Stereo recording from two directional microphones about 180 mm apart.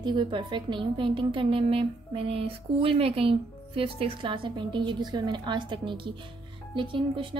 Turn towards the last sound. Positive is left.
turn(degrees=-30)  # may be behind; listen again after turning